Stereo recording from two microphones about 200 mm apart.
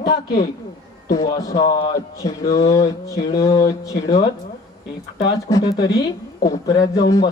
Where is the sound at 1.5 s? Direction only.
25° left (ahead or behind).